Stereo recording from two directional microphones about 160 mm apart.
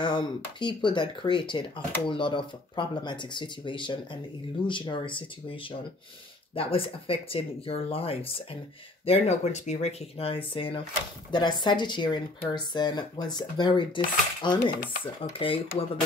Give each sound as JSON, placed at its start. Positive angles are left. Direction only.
{"t": 0.0, "sound": "speech", "side_deg": 30}